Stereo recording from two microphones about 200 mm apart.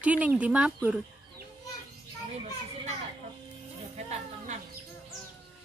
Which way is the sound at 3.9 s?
35° right (ahead or behind).